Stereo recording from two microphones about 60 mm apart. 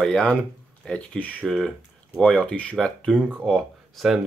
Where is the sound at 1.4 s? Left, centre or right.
Centre.